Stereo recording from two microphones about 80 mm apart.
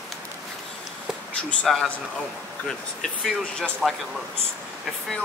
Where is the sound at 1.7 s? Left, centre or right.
Centre.